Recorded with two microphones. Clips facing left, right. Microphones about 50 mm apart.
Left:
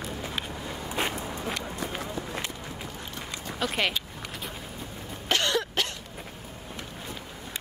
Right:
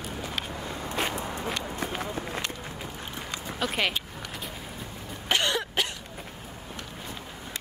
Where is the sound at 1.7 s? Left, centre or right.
Right.